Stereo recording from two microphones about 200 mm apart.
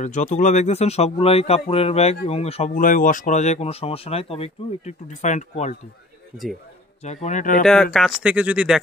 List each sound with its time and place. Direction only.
0.0 s a man's voice: 40° left (ahead or behind)
7.2 s a man's voice: 40° left (ahead or behind)
7.6 s speech: centre (ahead or behind)